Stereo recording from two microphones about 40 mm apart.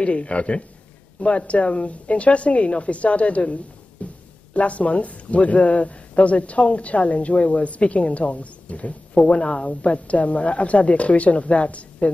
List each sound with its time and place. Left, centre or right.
0.0 s speech: left